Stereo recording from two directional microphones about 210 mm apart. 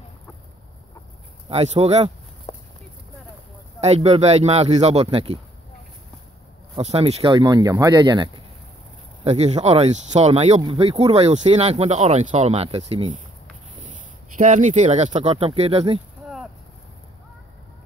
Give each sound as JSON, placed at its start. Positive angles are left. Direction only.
{"t": 1.5, "sound": "speech", "side_deg": -30}
{"t": 2.5, "sound": "clip-clop", "side_deg": 25}
{"t": 3.8, "sound": "speech", "side_deg": -30}
{"t": 6.7, "sound": "speech", "side_deg": -30}